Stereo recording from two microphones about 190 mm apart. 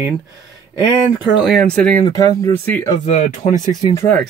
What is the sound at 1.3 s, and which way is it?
Speech, centre (ahead or behind).